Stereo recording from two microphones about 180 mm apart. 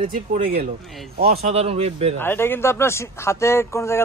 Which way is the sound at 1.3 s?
35° right (ahead or behind).